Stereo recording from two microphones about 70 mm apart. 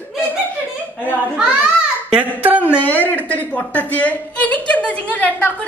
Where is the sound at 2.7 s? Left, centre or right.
Left.